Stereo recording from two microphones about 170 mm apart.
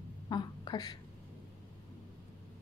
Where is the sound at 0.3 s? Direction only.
25° left (ahead or behind).